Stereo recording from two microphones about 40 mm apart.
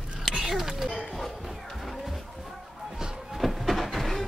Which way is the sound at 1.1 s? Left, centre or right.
Centre.